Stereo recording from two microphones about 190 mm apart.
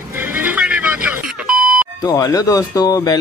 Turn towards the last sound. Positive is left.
turn(degrees=20)  # may be behind; listen again after turning